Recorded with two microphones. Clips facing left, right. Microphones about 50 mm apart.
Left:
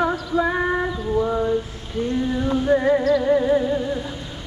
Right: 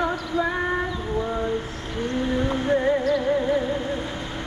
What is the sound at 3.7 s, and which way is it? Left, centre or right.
Humming, right.